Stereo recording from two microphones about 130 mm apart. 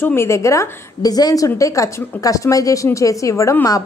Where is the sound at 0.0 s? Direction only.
20° left (ahead or behind).